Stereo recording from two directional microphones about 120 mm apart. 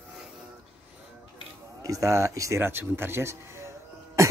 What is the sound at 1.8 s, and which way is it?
Speech, 30° right (ahead or behind).